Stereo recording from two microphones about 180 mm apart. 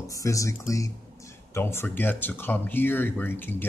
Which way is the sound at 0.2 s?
20° left (ahead or behind).